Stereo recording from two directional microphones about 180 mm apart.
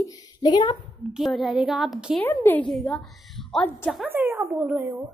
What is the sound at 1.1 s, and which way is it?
A woman's voice, centre (ahead or behind).